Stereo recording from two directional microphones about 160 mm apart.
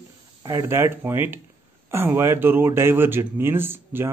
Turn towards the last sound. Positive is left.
turn(degrees=-15)  # may be behind; listen again after turning